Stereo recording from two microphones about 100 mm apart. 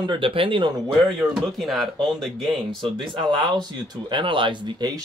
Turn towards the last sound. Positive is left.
turn(degrees=-50)  # may be behind; listen again after turning